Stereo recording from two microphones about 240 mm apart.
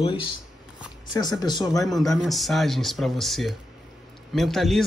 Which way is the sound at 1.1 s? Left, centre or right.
Centre.